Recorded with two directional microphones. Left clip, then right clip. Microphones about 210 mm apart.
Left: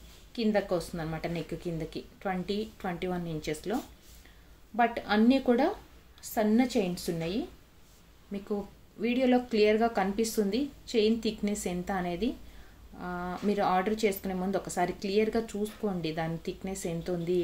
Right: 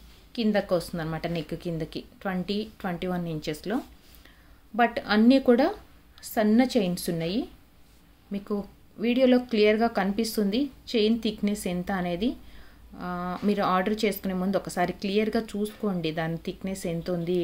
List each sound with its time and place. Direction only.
0.3 s speech: 25° right (ahead or behind)
4.7 s speech: 25° right (ahead or behind)